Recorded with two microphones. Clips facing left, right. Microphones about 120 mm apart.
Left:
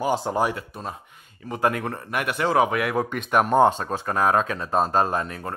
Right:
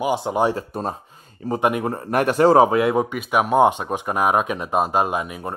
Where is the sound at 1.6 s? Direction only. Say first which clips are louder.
Right 2 dB; 20° right (ahead or behind).